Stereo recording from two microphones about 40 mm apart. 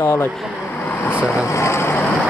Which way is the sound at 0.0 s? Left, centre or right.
Left.